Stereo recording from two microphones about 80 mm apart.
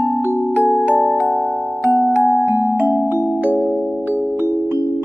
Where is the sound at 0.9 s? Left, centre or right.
Centre.